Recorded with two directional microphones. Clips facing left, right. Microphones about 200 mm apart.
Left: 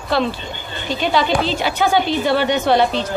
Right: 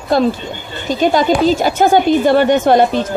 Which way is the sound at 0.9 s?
45° right (ahead or behind).